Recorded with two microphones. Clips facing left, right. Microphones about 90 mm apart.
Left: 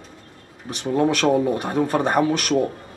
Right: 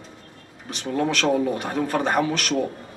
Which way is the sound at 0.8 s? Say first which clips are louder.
Left 4 dB; 20° left (ahead or behind).